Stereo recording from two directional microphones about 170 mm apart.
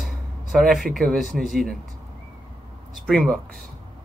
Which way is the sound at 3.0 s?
Centre (ahead or behind).